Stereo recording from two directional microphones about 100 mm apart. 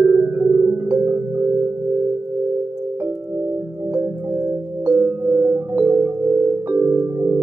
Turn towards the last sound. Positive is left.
turn(degrees=-25)  # may be behind; listen again after turning